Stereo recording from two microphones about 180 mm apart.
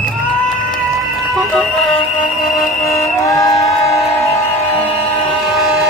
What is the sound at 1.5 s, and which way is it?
Music, centre (ahead or behind).